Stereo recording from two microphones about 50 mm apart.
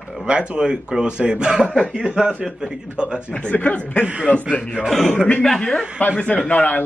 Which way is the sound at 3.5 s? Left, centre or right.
Left.